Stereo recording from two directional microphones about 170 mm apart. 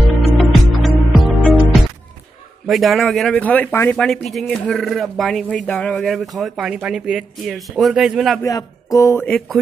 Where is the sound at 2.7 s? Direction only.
Centre (ahead or behind).